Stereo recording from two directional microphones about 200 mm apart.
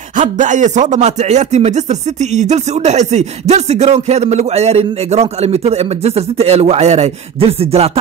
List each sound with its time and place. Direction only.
0.2 s speech: 40° right (ahead or behind)